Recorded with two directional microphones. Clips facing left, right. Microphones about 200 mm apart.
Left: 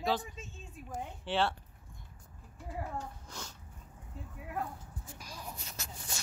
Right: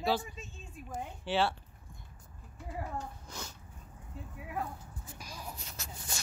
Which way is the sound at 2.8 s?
5° right (ahead or behind).